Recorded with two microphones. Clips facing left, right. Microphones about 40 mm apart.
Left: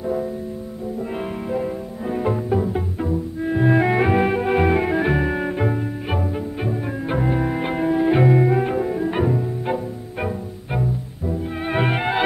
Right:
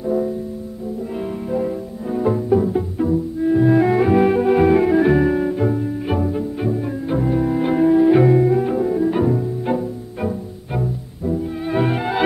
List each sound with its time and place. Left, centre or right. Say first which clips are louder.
0.0 s music: right 4 dB; centre
1.5 s music: right 3 dB; left
4.2 s organ: right 4 dB; centre
5.3 s music: right 3 dB; left
6.0 s music: right 5 dB; centre
7.1 s double bass: right 2 dB; left
7.7 s music: right 6 dB; centre
8.4 s cello: right 2 dB; left
11.7 s music: right 2 dB; left